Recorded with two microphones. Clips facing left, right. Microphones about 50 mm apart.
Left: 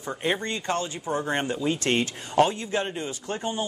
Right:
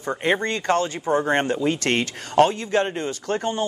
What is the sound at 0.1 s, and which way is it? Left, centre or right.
Speech, right.